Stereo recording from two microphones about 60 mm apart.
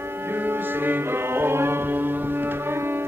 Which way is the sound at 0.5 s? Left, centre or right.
Right.